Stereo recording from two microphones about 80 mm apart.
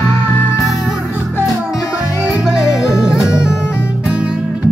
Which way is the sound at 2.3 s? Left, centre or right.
Centre.